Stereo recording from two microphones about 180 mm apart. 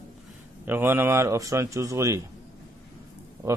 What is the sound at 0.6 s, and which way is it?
Speech, 10° right (ahead or behind).